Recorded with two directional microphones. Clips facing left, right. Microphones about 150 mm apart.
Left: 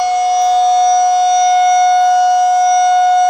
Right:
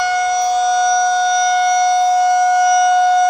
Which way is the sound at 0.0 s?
5° left (ahead or behind).